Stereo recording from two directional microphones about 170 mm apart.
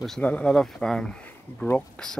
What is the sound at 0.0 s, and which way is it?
Speech, 5° left (ahead or behind).